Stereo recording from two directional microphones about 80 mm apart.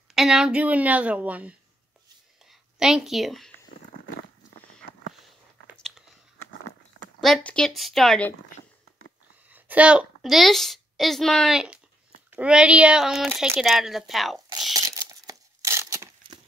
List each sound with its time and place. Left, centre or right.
0.1 s a sound: centre
0.6 s speech: centre
2.8 s a woman's voice: centre
5.8 s biting: centre
7.2 s a sound: centre
7.4 s speech: centre
7.7 s a woman's voice: centre
9.5 s a sound: centre
10.2 s a woman's voice: centre
12.4 s speech: centre
13.0 s a woman's voice: centre
14.7 s tearing: right
15.7 s a sound: right